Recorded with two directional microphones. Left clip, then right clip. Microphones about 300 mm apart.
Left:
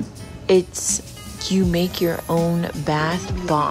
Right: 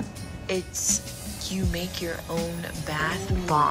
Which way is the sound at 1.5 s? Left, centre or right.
Left.